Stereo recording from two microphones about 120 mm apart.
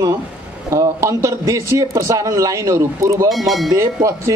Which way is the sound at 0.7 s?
25° right (ahead or behind).